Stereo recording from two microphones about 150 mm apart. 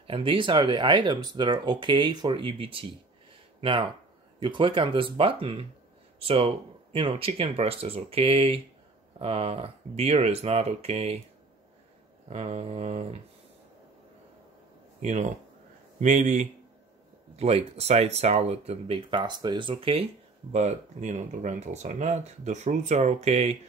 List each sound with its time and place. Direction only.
0.0 s speech: 35° right (ahead or behind)
12.3 s speech: 45° right (ahead or behind)
15.0 s speech: 50° right (ahead or behind)
20.5 s speech: 50° right (ahead or behind)